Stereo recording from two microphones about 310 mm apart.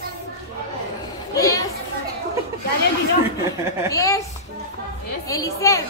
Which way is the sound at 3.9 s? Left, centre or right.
Centre.